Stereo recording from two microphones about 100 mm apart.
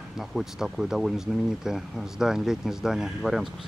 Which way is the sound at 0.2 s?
5° right (ahead or behind).